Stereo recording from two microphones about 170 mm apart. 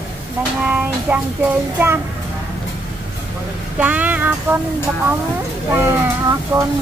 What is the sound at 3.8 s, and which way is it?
Speech, 10° right (ahead or behind).